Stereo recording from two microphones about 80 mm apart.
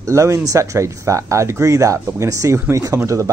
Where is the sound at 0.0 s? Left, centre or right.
Right.